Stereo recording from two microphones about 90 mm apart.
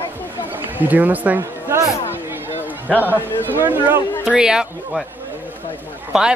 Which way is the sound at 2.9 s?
20° right (ahead or behind).